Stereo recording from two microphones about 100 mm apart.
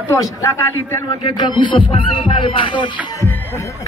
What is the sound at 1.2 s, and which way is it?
Speech, 50° left (ahead or behind).